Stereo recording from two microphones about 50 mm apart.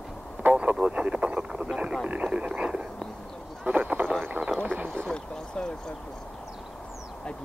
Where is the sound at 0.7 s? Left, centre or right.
Centre.